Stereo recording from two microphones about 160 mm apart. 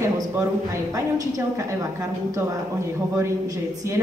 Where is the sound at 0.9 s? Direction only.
20° right (ahead or behind).